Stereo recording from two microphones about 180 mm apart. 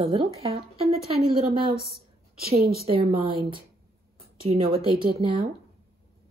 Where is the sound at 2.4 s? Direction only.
55° right (ahead or behind).